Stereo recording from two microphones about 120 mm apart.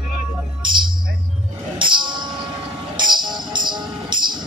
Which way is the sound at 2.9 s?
40° right (ahead or behind).